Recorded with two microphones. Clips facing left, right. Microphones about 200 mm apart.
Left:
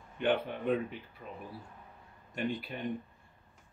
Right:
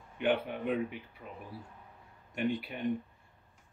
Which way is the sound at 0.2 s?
10° right (ahead or behind).